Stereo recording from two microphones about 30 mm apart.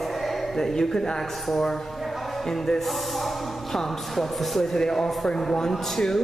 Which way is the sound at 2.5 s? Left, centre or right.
Centre.